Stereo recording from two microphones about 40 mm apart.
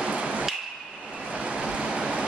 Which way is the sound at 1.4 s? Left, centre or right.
Right.